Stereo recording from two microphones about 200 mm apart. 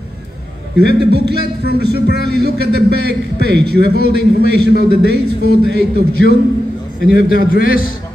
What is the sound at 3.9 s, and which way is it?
Speech, 50° left (ahead or behind).